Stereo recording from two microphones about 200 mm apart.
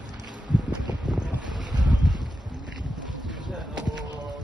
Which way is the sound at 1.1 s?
5° right (ahead or behind).